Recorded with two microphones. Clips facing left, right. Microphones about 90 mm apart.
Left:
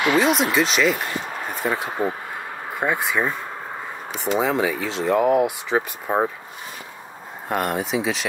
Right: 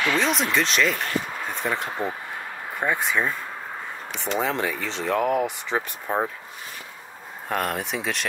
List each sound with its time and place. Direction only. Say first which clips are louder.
0.0 s speech: left 4 dB; 15° left (ahead or behind)
0.3 s speech: left 4 dB; 5° left (ahead or behind)
7.4 s speech: left 3 dB; 5° left (ahead or behind)